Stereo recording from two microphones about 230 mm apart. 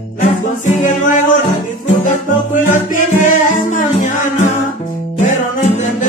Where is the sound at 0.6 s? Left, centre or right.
Left.